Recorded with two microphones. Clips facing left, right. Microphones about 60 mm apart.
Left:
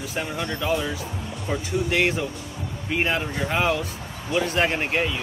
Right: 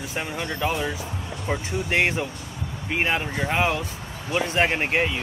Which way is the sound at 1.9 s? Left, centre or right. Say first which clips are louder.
Right 1 dB; right.